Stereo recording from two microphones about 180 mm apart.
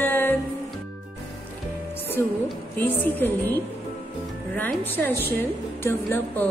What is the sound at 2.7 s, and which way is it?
Music, 10° left (ahead or behind).